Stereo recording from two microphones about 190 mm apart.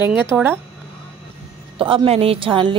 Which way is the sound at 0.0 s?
10° right (ahead or behind).